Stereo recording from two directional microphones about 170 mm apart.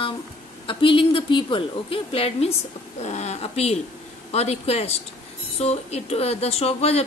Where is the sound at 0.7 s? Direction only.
30° left (ahead or behind).